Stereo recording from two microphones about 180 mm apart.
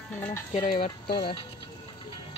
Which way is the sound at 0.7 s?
55° left (ahead or behind).